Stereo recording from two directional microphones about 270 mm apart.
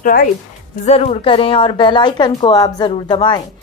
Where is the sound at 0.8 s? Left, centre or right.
Left.